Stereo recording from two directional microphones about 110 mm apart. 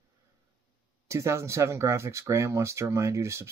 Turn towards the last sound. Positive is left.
turn(degrees=-25)  # may be behind; listen again after turning